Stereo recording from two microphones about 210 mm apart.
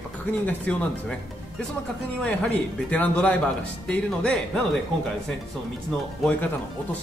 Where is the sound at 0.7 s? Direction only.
5° left (ahead or behind).